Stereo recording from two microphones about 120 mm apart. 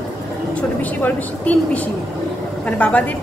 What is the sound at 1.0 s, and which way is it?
Speech, 10° left (ahead or behind).